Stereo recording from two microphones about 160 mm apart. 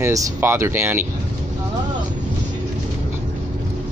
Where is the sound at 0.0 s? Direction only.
20° right (ahead or behind).